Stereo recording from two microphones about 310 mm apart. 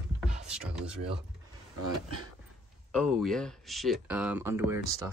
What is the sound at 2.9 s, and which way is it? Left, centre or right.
Speech, centre.